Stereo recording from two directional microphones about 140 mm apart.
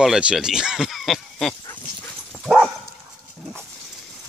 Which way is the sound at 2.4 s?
5° right (ahead or behind).